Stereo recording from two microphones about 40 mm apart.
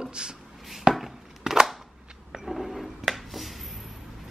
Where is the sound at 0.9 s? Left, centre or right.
Right.